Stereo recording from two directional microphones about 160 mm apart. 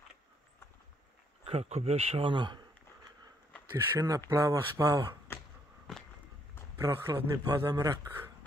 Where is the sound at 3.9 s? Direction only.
20° right (ahead or behind).